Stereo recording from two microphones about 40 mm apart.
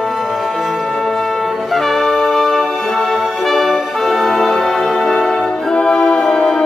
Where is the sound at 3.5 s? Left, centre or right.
Centre.